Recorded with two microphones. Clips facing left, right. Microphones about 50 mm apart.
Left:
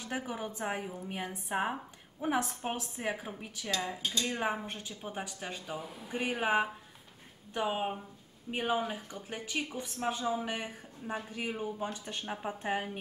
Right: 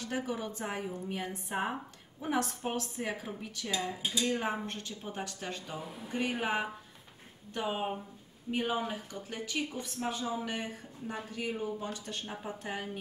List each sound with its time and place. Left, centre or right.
0.0 s speech: centre
4.0 s speech: centre
4.4 s speech: centre; by 13.0 s left